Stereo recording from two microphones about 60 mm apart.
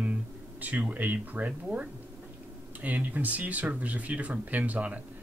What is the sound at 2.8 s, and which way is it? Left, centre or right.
Speech, right.